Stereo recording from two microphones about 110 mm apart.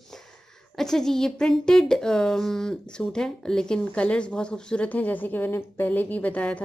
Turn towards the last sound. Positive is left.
turn(degrees=10)  # may be behind; listen again after turning